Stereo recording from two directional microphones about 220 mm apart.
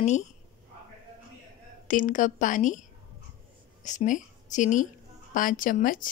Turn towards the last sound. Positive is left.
turn(degrees=40)  # may be behind; listen again after turning